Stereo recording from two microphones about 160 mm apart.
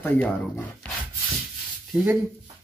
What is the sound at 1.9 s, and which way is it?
Speech, 10° right (ahead or behind).